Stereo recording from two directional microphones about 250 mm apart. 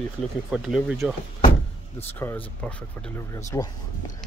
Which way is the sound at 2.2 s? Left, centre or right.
Centre.